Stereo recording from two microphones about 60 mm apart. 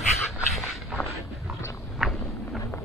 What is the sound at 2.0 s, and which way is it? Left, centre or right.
Walk, centre.